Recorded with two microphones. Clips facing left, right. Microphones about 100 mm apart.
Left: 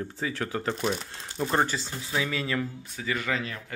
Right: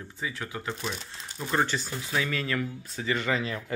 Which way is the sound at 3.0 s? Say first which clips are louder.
Right 2 dB; centre (ahead or behind).